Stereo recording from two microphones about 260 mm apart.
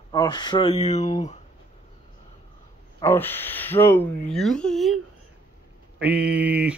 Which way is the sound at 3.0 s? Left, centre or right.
Centre.